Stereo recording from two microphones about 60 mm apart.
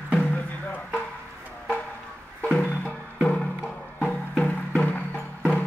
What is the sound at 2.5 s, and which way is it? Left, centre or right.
Music, left.